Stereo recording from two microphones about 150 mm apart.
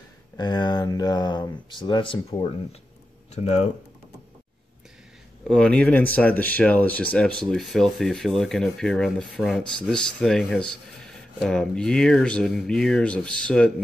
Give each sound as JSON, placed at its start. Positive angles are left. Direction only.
{"t": 0.4, "sound": "speech", "side_deg": 30}
{"t": 3.3, "sound": "speech", "side_deg": 50}
{"t": 5.5, "sound": "speech", "side_deg": 5}